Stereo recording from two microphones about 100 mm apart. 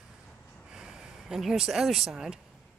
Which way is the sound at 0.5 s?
5° right (ahead or behind).